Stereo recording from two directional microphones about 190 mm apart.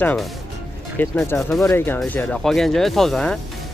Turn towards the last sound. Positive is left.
turn(degrees=0)  # may be behind; listen again after turning